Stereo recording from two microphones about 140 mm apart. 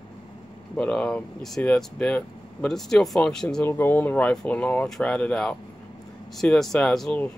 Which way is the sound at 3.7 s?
15° left (ahead or behind).